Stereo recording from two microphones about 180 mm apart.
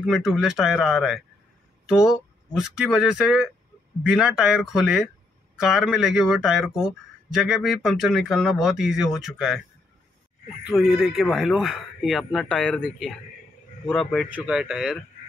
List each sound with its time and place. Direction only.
0.0 s speech: centre (ahead or behind)
10.7 s speech: centre (ahead or behind)